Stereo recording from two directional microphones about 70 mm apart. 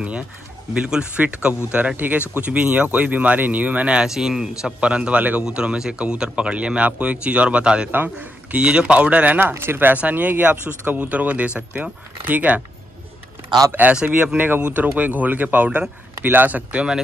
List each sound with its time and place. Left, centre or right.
0.7 s a man's voice: centre
4.7 s speech: centre
7.9 s a man's voice: right
13.7 s a man's voice: right